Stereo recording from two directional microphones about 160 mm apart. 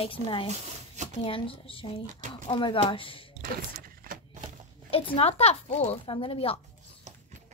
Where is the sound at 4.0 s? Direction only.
60° right (ahead or behind).